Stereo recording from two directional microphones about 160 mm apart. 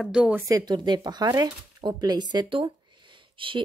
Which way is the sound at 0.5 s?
25° right (ahead or behind).